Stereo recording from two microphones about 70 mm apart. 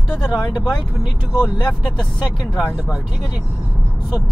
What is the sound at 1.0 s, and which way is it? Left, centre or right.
Speech, centre.